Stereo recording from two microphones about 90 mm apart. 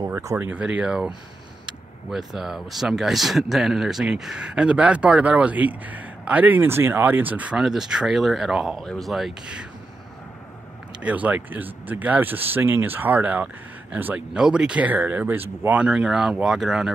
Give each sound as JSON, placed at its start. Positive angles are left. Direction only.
{"t": 0.0, "sound": "a sound", "side_deg": -35}
{"t": 0.4, "sound": "speech", "side_deg": -15}
{"t": 7.6, "sound": "speech", "side_deg": -5}
{"t": 11.0, "sound": "speech", "side_deg": -15}
{"t": 14.3, "sound": "speech", "side_deg": -10}
{"t": 15.8, "sound": "speech", "side_deg": -10}